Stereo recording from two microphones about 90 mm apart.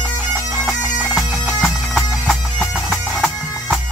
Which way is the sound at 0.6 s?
Centre (ahead or behind).